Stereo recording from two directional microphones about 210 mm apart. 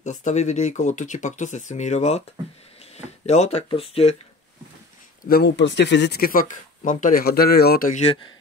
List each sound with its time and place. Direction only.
0.0 s speech: 35° left (ahead or behind)
3.3 s speech: 30° left (ahead or behind)
5.2 s speech: 50° left (ahead or behind)